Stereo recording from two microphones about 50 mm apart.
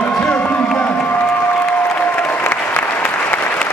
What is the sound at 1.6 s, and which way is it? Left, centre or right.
Applause, left.